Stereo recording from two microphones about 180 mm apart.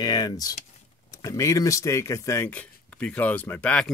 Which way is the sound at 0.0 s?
20° left (ahead or behind).